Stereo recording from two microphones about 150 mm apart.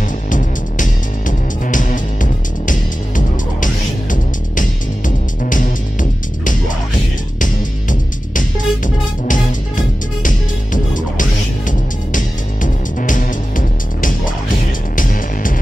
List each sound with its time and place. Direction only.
0.3 s music: 60° left (ahead or behind)